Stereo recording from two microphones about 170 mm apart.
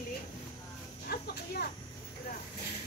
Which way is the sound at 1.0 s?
65° left (ahead or behind).